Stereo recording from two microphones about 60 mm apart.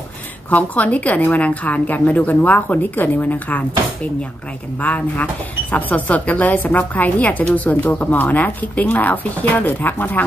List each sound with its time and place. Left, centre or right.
0.5 s a woman's voice: left
4.8 s a woman's voice: left